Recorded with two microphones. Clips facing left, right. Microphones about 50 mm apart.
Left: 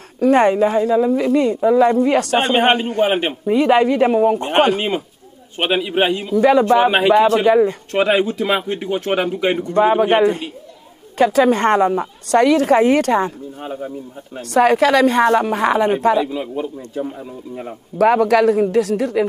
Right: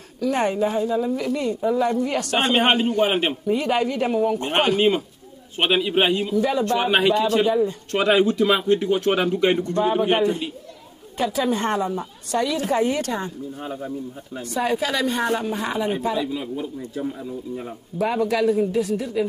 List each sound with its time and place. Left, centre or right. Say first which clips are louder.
0.2 s a woman's voice: left 8 dB; left
1.3 s speech: left 8 dB; left
2.3 s speech: even; centre
3.4 s speech: left 11 dB; left
4.4 s speech: left 4 dB; centre
7.4 s speech: left 7 dB; left
7.9 s speech: left 2 dB; centre
8.5 s speech: right 1 dB; left
9.8 s speech: left 9 dB; left
11.2 s speech: left 8 dB; left
13.6 s speech: left 3 dB; centre
14.5 s a woman's voice: left 10 dB; left
16.2 s speech: left 6 dB; centre
17.9 s a woman's voice: left 8 dB; left